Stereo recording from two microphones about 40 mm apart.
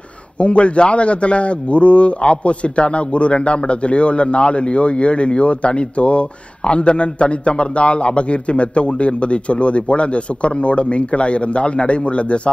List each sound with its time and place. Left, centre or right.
0.4 s a man's voice: left